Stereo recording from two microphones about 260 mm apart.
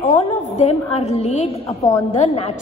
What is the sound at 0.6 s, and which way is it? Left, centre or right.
A woman's voice, left.